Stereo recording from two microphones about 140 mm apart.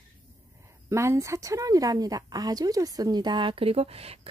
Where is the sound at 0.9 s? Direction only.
20° right (ahead or behind).